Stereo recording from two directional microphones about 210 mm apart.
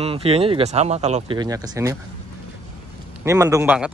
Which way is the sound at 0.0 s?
30° right (ahead or behind).